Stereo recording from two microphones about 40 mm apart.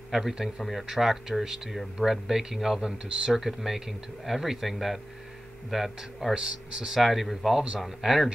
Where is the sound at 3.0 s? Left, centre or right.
Right.